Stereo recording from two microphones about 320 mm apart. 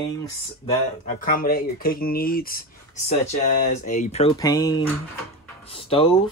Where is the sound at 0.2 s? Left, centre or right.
Left.